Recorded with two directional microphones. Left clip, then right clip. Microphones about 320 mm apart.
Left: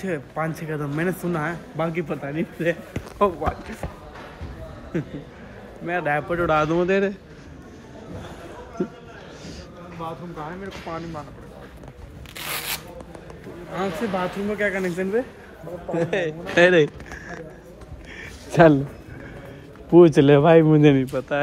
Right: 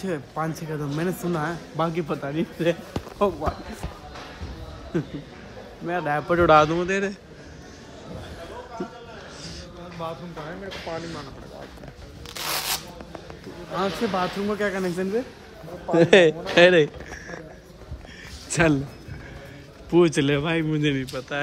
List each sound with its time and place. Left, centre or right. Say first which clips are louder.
0.0 s speech: left 2 dB; centre
4.9 s speech: right 1 dB; centre
6.2 s a man's voice: right 5 dB; centre
6.6 s a man's voice: left 2 dB; centre
12.4 s rub: right 2 dB; centre
13.7 s speech: right 1 dB; centre
15.9 s a man's voice: right 9 dB; right
16.5 s speech: left 1 dB; centre
18.5 s speech: left 7 dB; centre
19.9 s a man's voice: left 7 dB; centre